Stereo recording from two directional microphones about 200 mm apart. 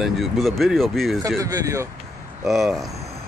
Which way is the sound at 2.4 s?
Centre (ahead or behind).